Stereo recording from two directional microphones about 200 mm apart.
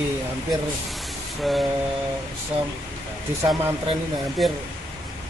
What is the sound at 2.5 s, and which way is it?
Speech, 30° right (ahead or behind).